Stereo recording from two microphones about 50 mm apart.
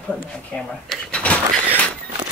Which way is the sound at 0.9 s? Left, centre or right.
Left.